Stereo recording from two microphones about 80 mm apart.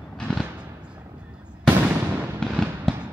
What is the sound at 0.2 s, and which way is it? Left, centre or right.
Fireworks, centre.